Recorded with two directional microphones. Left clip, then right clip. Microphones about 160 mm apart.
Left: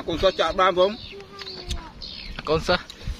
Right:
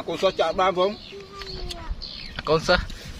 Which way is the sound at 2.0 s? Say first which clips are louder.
Right 3 dB; centre (ahead or behind).